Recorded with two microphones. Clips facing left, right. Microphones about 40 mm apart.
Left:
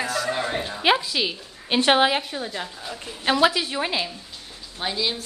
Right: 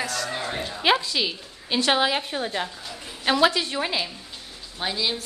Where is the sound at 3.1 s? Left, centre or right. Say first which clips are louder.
Left 1 dB; centre.